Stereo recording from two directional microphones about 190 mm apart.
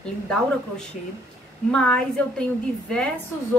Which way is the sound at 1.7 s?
5° left (ahead or behind).